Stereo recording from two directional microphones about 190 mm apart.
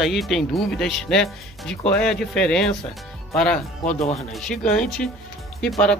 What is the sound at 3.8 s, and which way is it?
Speech, 35° left (ahead or behind).